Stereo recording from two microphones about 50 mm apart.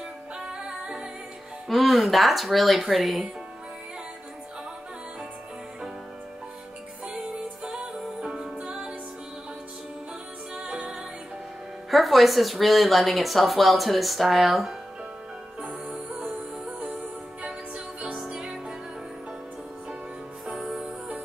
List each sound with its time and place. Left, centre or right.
0.5 s music: centre
1.7 s speech: centre
7.1 s music: centre
10.5 s music: centre
11.9 s speech: centre
18.1 s music: centre
20.4 s music: centre